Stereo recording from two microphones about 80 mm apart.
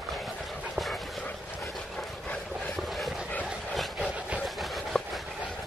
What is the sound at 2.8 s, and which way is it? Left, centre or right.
Dog, centre.